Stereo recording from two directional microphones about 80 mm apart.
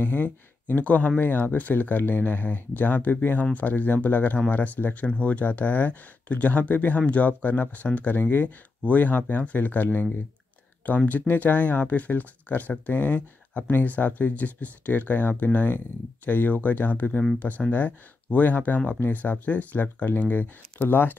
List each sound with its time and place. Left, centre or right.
0.0 s speech: left